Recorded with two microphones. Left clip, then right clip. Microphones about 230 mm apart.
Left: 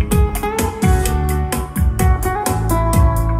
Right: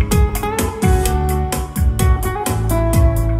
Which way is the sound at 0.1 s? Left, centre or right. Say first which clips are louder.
Even; centre.